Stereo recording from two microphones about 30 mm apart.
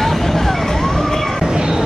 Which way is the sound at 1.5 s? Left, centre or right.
Right.